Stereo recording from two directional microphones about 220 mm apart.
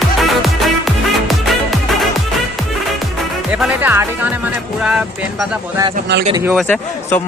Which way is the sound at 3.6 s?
10° right (ahead or behind).